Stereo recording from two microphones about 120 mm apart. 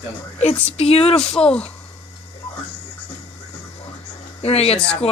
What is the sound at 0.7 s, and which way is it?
Speech, 55° left (ahead or behind).